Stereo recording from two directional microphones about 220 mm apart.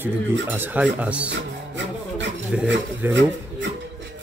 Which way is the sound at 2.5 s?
5° right (ahead or behind).